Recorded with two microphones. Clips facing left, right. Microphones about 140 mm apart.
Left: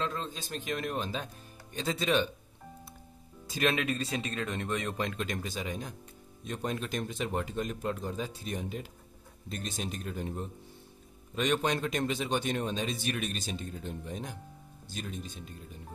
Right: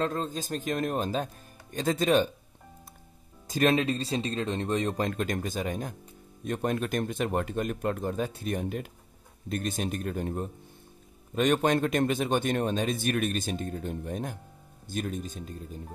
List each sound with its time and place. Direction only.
0.0 s speech: 45° right (ahead or behind)
3.4 s speech: 40° right (ahead or behind)